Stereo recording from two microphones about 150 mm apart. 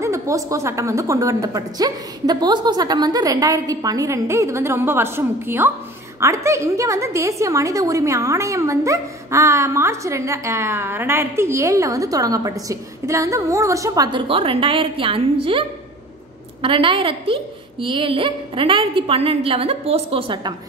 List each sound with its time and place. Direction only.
0.0 s a woman's voice: 20° right (ahead or behind)
14.2 s a woman's voice: 40° right (ahead or behind)
16.6 s a woman's voice: 35° right (ahead or behind)